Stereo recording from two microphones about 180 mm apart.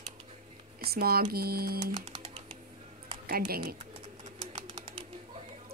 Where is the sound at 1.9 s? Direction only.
35° right (ahead or behind).